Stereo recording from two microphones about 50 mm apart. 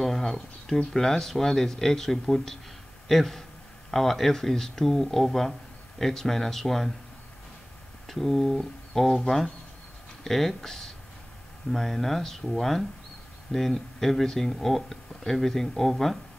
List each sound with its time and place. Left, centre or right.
0.0 s a sound: centre
0.9 s speech: centre
8.1 s speech: centre